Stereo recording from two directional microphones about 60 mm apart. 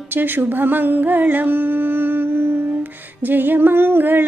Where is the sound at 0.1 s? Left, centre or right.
Right.